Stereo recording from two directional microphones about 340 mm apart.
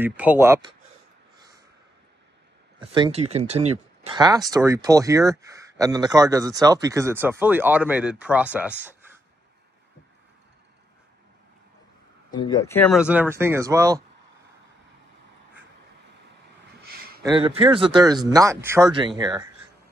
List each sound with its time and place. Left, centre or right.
0.0 s speech: centre
2.9 s speech: centre
12.4 s speech: centre
17.2 s speech: centre